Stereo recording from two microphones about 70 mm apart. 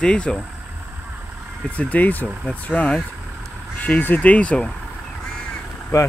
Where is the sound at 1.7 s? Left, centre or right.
Left.